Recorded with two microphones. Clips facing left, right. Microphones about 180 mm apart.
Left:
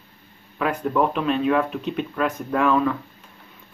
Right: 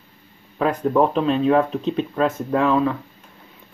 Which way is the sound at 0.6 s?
35° right (ahead or behind).